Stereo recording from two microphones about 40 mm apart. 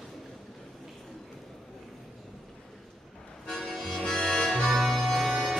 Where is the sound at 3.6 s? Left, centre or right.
Centre.